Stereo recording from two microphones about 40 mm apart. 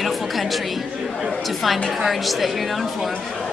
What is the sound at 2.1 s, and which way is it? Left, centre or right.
Speech, centre.